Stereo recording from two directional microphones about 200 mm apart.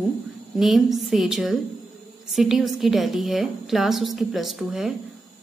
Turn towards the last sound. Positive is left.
turn(degrees=0)  # may be behind; listen again after turning